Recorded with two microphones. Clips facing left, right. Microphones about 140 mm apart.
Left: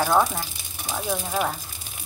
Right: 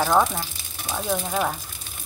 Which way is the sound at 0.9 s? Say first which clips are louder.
Right 1 dB; 5° left (ahead or behind).